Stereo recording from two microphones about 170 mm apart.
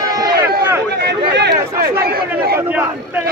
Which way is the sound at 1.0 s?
80° right.